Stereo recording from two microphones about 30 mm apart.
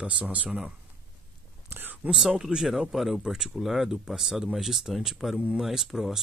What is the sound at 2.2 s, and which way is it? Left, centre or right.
Speech, centre.